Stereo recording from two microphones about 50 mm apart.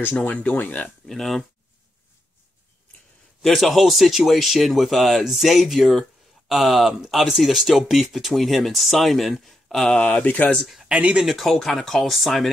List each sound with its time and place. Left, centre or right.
0.1 s speech: left
1.0 s speech: centre
3.4 s speech: centre
9.8 s speech: centre
10.2 s speech: left
10.9 s speech: right
11.2 s speech: centre